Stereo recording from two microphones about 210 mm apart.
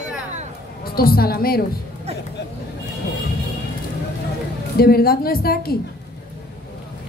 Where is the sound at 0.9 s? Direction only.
45° left (ahead or behind).